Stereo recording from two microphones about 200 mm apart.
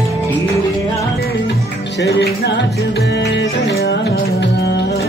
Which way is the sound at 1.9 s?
55° left (ahead or behind).